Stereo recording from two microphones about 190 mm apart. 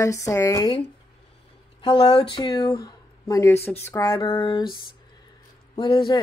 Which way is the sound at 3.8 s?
15° left (ahead or behind).